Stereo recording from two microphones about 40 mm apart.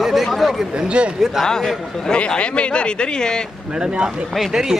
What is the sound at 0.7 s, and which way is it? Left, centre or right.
Speech, right.